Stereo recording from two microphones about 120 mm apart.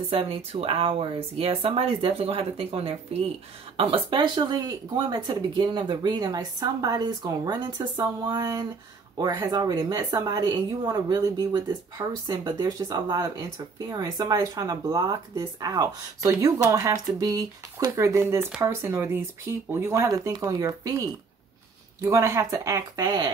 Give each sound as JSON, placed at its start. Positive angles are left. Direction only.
{"t": 0.1, "sound": "speech", "side_deg": -50}